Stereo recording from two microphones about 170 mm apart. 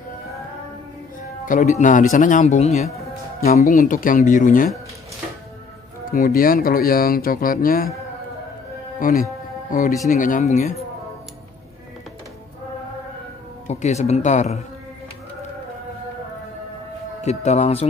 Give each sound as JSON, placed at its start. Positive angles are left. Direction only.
{"t": 1.4, "sound": "speech", "side_deg": 50}
{"t": 6.1, "sound": "speech", "side_deg": 55}
{"t": 9.0, "sound": "speech", "side_deg": 50}
{"t": 13.7, "sound": "speech", "side_deg": 40}
{"t": 17.2, "sound": "speech", "side_deg": 40}